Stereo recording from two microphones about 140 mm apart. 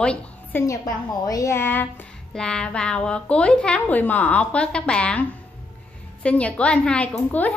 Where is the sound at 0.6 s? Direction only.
25° left (ahead or behind).